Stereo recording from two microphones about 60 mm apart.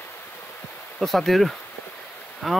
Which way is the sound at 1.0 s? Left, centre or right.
Centre.